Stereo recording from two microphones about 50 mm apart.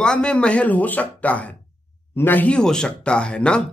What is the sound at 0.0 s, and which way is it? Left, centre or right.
Speech, centre.